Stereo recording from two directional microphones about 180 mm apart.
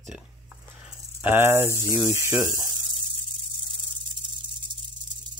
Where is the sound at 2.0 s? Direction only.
15° right (ahead or behind).